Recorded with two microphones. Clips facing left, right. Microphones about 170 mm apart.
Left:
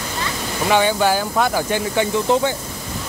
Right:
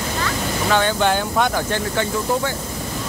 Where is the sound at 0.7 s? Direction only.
10° left (ahead or behind).